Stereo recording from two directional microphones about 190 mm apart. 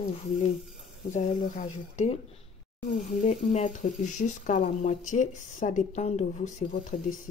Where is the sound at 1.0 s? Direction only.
40° left (ahead or behind).